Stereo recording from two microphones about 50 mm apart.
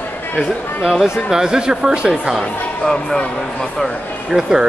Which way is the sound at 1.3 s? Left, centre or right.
Centre.